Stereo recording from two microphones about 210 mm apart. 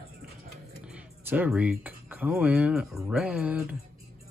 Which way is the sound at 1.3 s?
10° right (ahead or behind).